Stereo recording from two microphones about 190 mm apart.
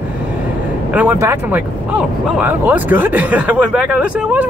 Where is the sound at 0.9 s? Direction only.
10° right (ahead or behind).